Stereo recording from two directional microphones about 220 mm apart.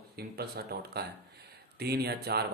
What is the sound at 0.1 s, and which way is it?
Speech, 45° right (ahead or behind).